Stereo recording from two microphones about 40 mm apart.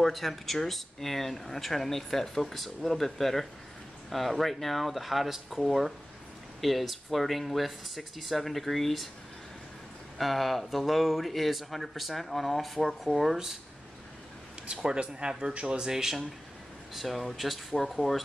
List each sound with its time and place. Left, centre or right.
0.0 s speech: centre
10.1 s speech: centre
14.7 s speech: right
15.8 s speech: centre
16.9 s speech: centre